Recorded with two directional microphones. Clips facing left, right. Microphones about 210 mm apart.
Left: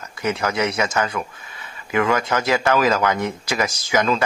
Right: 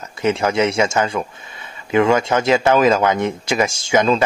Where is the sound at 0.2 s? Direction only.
25° right (ahead or behind).